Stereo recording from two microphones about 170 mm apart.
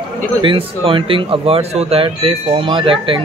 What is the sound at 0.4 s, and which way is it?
A man's voice, 30° right (ahead or behind).